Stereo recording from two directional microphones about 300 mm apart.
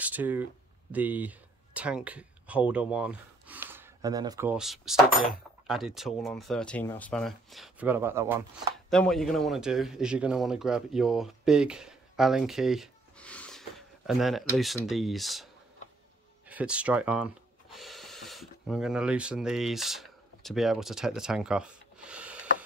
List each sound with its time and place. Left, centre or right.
0.0 s speech: centre